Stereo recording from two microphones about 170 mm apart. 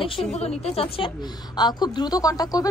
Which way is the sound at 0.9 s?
25° left (ahead or behind).